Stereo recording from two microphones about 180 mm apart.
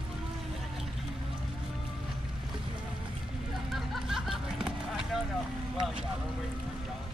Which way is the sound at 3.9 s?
Centre (ahead or behind).